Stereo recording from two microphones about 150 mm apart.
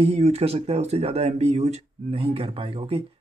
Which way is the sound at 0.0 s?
40° right (ahead or behind).